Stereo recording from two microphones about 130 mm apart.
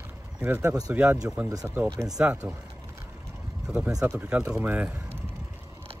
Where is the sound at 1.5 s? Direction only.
25° right (ahead or behind).